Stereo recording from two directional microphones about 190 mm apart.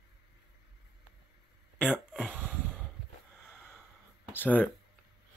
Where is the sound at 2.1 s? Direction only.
10° right (ahead or behind).